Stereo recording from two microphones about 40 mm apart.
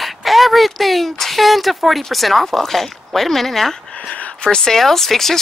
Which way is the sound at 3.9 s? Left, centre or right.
Left.